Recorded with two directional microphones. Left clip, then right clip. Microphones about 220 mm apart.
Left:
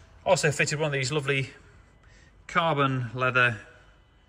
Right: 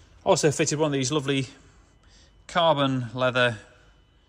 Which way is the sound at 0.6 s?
20° right (ahead or behind).